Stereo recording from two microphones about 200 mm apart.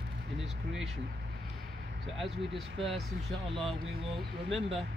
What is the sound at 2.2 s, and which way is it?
Speech, centre (ahead or behind).